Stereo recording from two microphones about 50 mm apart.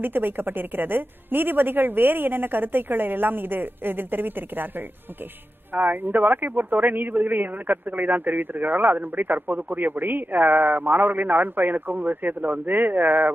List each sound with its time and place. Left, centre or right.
0.0 s a man's voice: right